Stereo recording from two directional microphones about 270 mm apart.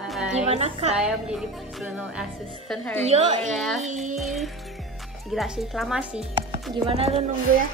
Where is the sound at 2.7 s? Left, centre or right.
Centre.